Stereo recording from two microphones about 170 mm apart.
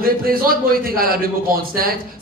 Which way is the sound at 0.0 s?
60° right (ahead or behind).